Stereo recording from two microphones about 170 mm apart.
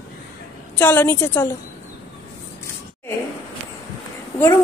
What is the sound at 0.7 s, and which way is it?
Speech, 10° left (ahead or behind).